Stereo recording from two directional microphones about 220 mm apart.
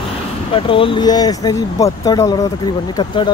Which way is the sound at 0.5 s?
25° left (ahead or behind).